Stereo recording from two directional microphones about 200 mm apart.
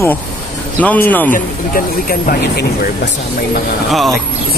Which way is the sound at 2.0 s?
45° left (ahead or behind).